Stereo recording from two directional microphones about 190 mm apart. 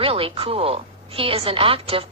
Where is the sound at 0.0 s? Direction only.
30° right (ahead or behind).